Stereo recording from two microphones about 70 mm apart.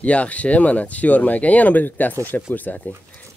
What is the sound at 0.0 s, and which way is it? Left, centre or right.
Speech, centre.